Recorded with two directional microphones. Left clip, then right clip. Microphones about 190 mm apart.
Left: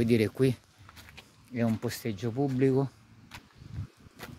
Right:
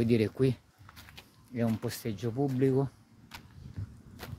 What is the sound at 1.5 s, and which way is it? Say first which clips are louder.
Speech: left 2 dB; 35° left (ahead or behind).